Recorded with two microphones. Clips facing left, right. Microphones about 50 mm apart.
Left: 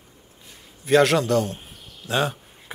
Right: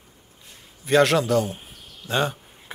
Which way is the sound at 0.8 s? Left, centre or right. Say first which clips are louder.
Left 1 dB; centre.